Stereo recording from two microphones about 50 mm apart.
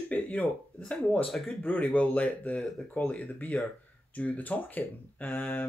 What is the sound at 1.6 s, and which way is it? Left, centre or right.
Speech, left.